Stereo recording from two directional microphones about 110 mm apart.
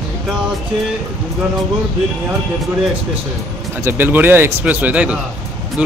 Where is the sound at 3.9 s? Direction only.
20° right (ahead or behind).